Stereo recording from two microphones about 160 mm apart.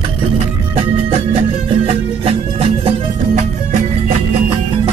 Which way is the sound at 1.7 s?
40° right (ahead or behind).